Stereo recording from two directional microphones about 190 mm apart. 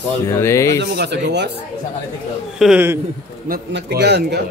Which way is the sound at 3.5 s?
60° right (ahead or behind).